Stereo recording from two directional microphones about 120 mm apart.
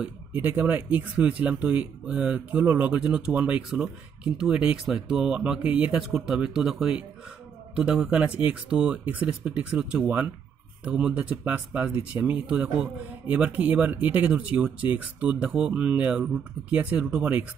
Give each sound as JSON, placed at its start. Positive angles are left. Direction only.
{"t": 0.3, "sound": "speech", "side_deg": -15}